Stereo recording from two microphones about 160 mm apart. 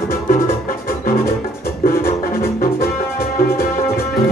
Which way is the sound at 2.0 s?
15° left (ahead or behind).